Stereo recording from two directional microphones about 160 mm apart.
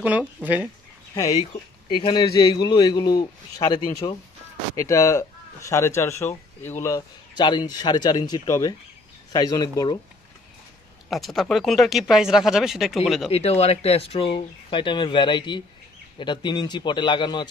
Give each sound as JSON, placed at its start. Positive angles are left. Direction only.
{"t": 0.4, "sound": "speech", "side_deg": -10}
{"t": 1.3, "sound": "speech", "side_deg": 40}
{"t": 2.0, "sound": "a man's voice", "side_deg": 30}
{"t": 4.7, "sound": "a man's voice", "side_deg": 20}
{"t": 11.1, "sound": "speech", "side_deg": 0}
{"t": 13.3, "sound": "a man's voice", "side_deg": 40}